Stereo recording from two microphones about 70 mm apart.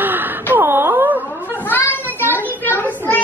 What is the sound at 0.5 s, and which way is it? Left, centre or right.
Wail, right.